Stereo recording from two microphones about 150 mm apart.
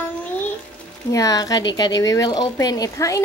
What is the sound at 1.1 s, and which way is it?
A woman's voice, 25° left (ahead or behind).